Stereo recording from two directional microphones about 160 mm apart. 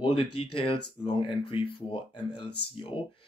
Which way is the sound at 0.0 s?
35° left (ahead or behind).